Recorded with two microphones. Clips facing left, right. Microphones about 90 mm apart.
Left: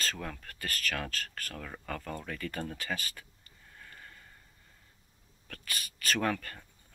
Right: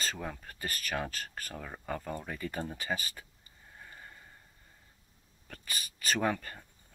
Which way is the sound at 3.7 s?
15° right (ahead or behind).